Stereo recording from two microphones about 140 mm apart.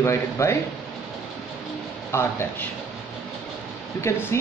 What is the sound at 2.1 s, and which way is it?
Speech, 20° left (ahead or behind).